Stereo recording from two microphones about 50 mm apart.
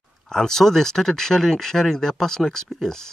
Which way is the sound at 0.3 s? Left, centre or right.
Centre.